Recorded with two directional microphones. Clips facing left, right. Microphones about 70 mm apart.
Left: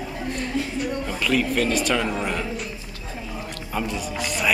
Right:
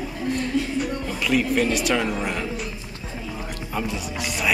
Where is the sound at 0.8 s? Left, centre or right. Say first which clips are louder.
Even; centre.